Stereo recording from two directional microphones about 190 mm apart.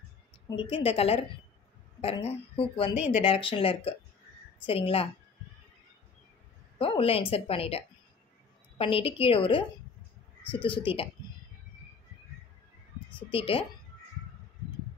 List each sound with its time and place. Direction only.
0.6 s a woman's voice: 30° left (ahead or behind)
6.8 s a woman's voice: 30° left (ahead or behind)
13.3 s a woman's voice: 30° left (ahead or behind)